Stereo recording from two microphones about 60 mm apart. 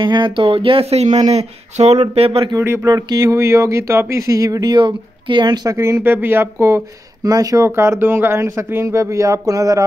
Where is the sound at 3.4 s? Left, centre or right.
Right.